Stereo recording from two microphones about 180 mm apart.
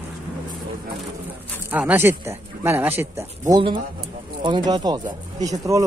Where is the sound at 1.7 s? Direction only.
10° right (ahead or behind).